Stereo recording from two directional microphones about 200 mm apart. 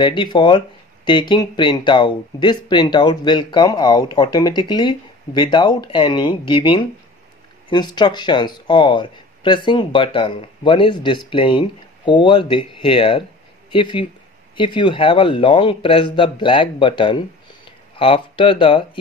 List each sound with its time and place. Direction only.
0.0 s speech: 25° left (ahead or behind)